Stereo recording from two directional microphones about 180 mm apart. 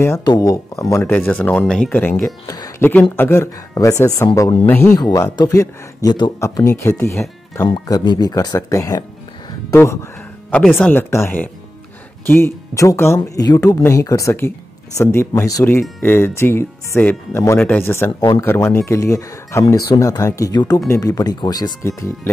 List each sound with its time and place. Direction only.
0.2 s speech: 20° left (ahead or behind)
4.6 s speech: 10° left (ahead or behind)
7.6 s speech: 25° left (ahead or behind)
10.5 s speech: centre (ahead or behind)
10.9 s speech: 15° left (ahead or behind)